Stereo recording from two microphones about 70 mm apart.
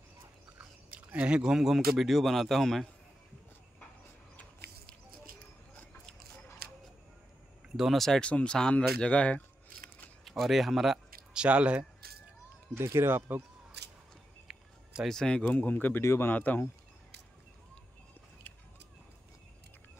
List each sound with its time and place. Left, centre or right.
0.9 s speech: centre
7.7 s a sound: centre
8.2 s speech: centre
10.2 s speech: centre
11.4 s speech: centre
12.7 s speech: right
14.5 s a sound: centre
15.0 s speech: centre
15.4 s speech: left